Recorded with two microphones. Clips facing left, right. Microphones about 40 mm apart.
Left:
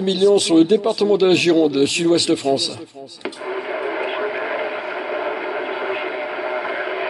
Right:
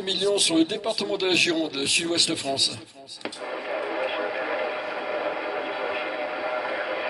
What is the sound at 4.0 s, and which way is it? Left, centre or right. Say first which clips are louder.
Vehicle: left 4 dB; left.